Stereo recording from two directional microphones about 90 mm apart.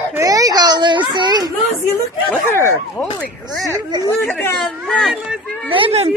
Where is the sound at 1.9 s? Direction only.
25° left (ahead or behind).